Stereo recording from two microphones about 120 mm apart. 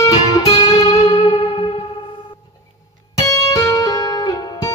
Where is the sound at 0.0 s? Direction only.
30° left (ahead or behind).